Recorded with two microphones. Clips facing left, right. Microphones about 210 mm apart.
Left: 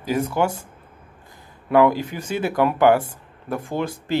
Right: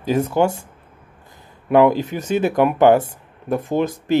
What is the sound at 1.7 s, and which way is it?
Speech, 20° right (ahead or behind).